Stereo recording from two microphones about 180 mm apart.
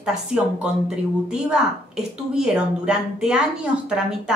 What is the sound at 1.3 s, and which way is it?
A woman's voice, 5° right (ahead or behind).